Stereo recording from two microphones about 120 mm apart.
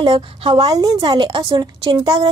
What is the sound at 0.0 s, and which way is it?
A woman's voice, 45° right (ahead or behind).